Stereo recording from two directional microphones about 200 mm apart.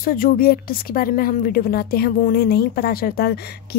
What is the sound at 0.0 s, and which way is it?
Speech, 45° left (ahead or behind).